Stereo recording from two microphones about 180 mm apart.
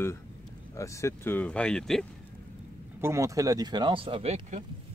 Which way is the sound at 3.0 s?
15° right (ahead or behind).